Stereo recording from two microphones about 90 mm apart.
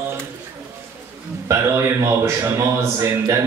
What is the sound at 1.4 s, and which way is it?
A man's voice, 35° right (ahead or behind).